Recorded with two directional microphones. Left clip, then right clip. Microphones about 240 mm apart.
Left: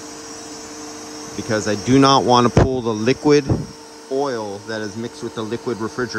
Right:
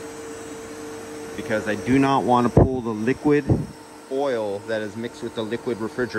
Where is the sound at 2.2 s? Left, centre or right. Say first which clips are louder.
Left 4 dB; right.